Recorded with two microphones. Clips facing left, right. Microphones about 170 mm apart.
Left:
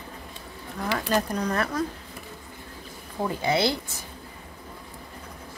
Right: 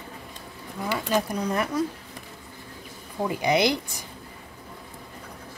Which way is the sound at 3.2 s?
15° right (ahead or behind).